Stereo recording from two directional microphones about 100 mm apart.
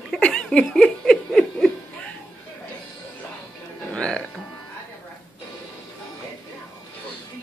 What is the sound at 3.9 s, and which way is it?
Speech, 10° left (ahead or behind).